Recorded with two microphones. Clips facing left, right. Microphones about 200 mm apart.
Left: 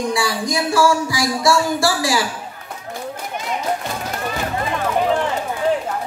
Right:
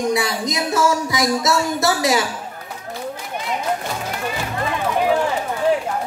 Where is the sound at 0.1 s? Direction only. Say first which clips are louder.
Even; 20° right (ahead or behind).